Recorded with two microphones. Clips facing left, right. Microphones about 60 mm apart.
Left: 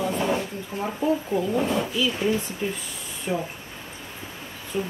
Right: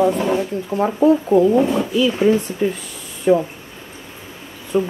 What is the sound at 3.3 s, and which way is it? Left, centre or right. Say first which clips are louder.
Speech: right 13 dB; right.